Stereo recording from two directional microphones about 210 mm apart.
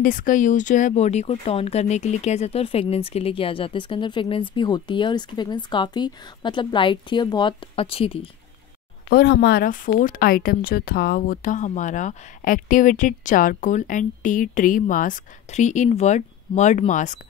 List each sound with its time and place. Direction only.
0.0 s speech: 40° left (ahead or behind)
9.1 s speech: 55° left (ahead or behind); by 17.2 s 35° left (ahead or behind)